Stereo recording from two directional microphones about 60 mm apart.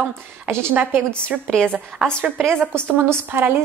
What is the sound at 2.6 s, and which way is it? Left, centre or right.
A woman's voice, right.